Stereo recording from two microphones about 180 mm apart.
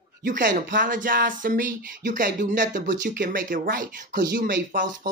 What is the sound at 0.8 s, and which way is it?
Speech, 50° right (ahead or behind).